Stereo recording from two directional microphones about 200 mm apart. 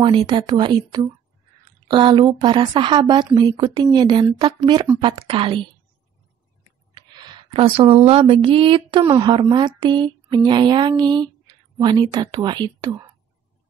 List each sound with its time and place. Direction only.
0.0 s speech: 25° right (ahead or behind)
6.9 s speech: 25° right (ahead or behind)